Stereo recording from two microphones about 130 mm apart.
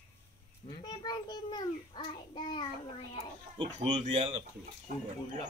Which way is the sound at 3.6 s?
35° right (ahead or behind).